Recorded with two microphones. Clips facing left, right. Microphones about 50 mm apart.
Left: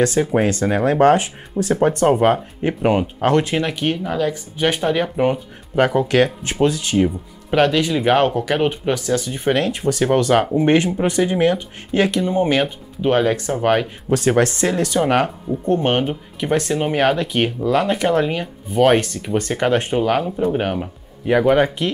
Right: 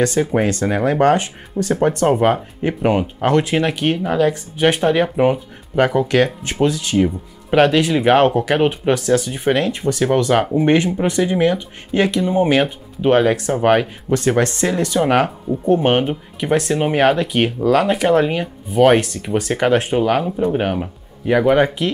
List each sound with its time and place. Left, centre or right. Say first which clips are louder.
0.0 s speech: even; centre
3.6 s speech: right 3 dB; centre
7.5 s speech: right 3 dB; centre
9.6 s speech: right 1 dB; centre
14.0 s speech: even; centre